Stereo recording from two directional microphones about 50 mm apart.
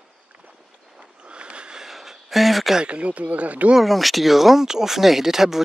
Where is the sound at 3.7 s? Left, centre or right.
Centre.